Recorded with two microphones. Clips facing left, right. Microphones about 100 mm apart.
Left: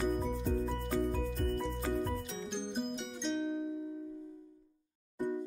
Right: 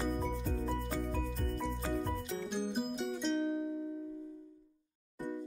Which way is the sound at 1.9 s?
Centre (ahead or behind).